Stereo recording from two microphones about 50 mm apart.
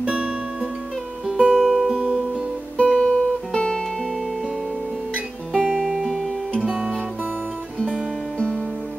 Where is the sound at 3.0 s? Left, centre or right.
Centre.